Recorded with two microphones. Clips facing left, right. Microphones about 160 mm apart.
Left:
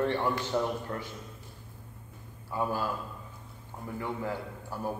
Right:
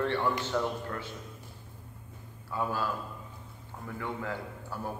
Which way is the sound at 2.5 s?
15° left (ahead or behind).